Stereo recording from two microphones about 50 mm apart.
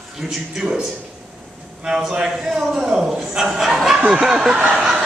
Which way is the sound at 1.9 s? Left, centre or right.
Centre.